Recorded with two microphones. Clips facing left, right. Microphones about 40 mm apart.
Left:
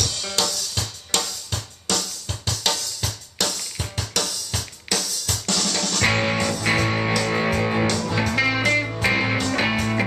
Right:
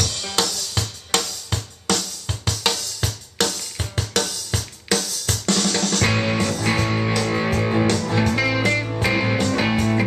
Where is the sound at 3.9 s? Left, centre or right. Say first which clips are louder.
Right 4 dB; right.